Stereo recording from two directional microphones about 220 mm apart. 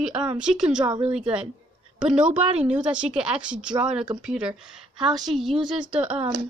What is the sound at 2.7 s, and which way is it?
Speech, 5° right (ahead or behind).